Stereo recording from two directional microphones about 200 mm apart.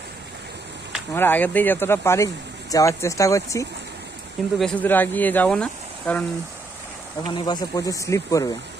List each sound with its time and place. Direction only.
1.1 s speech: 10° left (ahead or behind)
4.6 s speech: 5° left (ahead or behind)
7.2 s speech: 20° left (ahead or behind)